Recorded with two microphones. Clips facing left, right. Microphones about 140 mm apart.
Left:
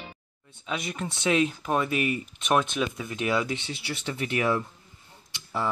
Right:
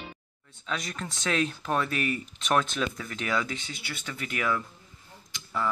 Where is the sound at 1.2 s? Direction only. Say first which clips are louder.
Left 4 dB; 15° left (ahead or behind); by 4.6 s 30° left (ahead or behind).